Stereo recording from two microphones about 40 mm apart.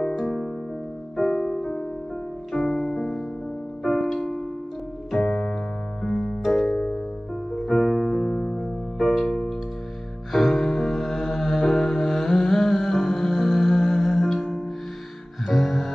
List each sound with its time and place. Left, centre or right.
1.1 s music: centre
15.4 s music: centre